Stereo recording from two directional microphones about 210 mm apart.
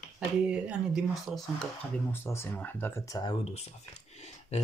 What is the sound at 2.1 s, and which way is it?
Speech, 10° left (ahead or behind).